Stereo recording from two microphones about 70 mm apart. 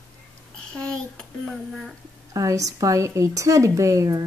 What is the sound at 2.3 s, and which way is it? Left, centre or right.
A woman's voice, right.